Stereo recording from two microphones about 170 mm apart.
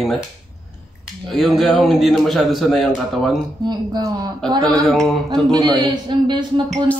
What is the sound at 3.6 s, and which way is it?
Speech, 25° right (ahead or behind).